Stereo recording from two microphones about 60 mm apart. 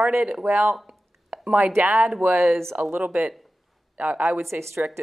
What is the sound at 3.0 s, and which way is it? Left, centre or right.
Speech, centre.